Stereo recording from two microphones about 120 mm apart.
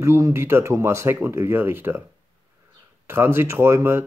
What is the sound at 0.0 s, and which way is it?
Speech, 20° right (ahead or behind).